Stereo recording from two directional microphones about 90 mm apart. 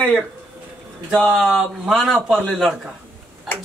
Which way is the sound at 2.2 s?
20° right (ahead or behind).